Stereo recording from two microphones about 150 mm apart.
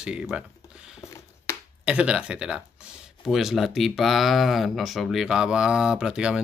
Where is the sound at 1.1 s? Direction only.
20° left (ahead or behind).